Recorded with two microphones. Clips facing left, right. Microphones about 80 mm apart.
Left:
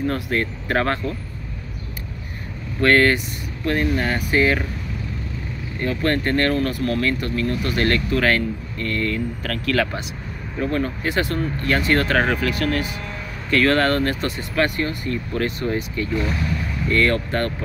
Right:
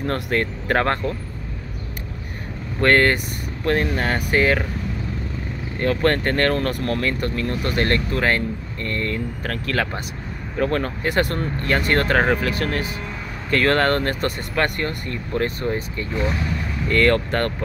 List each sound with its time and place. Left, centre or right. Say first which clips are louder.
0.0 s speech: even; right
2.8 s speech: even; right
5.8 s speech: right 2 dB; right
10.6 s speech: right 1 dB; right
15.3 s speech: right 2 dB; right
16.9 s speech: right 2 dB; right